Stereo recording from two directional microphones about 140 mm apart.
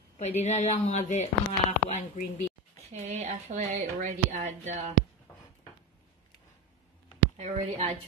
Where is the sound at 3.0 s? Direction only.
60° right (ahead or behind).